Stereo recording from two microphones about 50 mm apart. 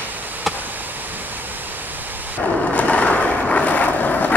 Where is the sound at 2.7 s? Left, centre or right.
Left.